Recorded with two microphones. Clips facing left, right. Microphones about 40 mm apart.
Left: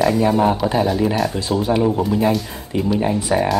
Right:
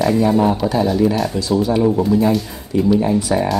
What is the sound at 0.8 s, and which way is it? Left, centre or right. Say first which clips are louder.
Speech: right 2 dB; centre.